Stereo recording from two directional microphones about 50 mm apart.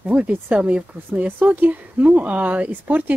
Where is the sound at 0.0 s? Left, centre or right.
Right.